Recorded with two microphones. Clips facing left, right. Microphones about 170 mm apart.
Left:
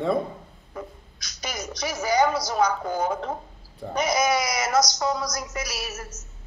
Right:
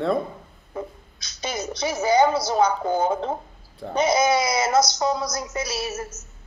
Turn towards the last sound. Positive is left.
turn(degrees=-25)  # may be behind; listen again after turning